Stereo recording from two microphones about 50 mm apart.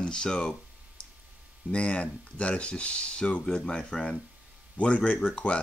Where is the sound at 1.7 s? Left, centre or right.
Left.